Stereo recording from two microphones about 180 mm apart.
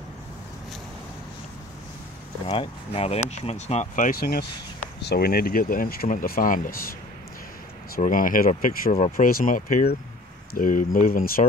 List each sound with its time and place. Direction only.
2.4 s speech: 30° left (ahead or behind); by 6.8 s 50° left (ahead or behind)
7.9 s speech: 50° left (ahead or behind)